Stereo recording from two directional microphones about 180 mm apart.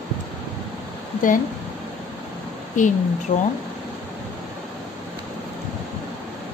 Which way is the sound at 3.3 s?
45° left (ahead or behind).